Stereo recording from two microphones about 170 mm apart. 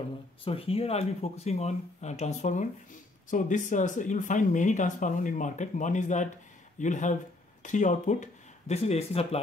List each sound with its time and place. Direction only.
0.5 s speech: 35° left (ahead or behind)